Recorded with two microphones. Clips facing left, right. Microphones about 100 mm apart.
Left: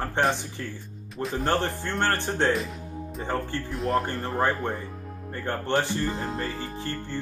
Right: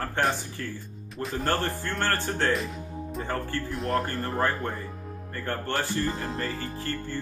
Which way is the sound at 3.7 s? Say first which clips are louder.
Left 3 dB; centre (ahead or behind).